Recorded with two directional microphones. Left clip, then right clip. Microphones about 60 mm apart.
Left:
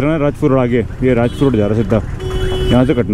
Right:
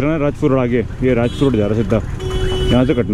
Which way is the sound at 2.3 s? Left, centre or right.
Left.